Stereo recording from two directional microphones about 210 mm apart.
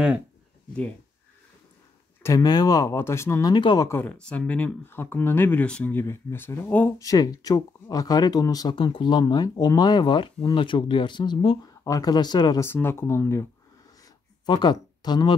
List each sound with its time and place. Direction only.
2.2 s speech: 15° left (ahead or behind)